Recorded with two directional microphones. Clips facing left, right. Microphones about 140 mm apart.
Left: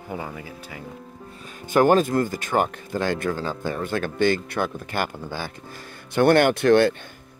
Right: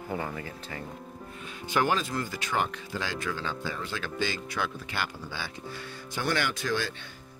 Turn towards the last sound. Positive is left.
turn(degrees=60)  # may be behind; listen again after turning